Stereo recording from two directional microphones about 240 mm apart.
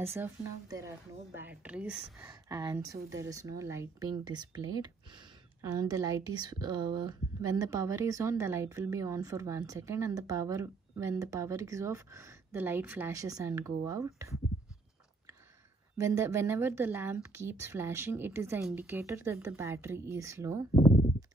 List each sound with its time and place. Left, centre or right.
0.0 s speech: centre
5.7 s speech: centre
16.0 s speech: centre
20.7 s a sound: left